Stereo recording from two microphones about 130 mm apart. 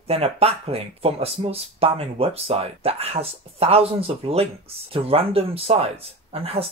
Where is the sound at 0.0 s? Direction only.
50° right (ahead or behind).